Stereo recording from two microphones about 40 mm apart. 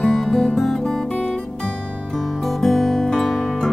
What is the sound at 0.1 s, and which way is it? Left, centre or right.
Music, centre.